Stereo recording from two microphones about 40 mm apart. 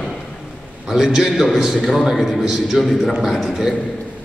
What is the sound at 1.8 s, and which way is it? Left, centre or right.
A man's voice, centre.